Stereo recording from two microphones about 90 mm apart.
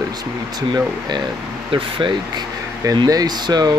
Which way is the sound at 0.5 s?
45° right (ahead or behind).